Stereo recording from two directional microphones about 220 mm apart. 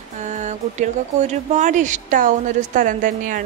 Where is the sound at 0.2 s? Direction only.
35° right (ahead or behind).